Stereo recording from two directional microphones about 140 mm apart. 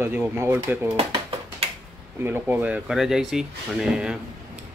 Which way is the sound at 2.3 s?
10° right (ahead or behind).